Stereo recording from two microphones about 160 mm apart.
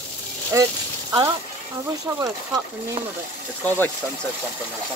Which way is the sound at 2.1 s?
20° right (ahead or behind).